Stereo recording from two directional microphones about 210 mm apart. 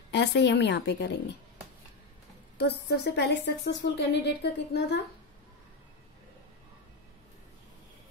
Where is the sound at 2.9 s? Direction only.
55° left (ahead or behind).